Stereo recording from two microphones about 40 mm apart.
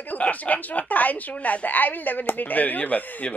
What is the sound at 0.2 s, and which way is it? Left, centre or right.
Speech, left.